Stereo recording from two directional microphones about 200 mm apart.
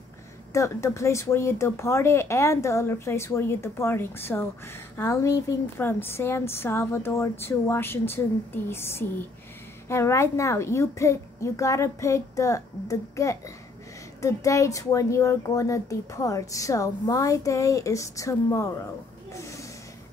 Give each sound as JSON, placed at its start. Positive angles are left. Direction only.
{"t": 0.5, "sound": "speech", "side_deg": 15}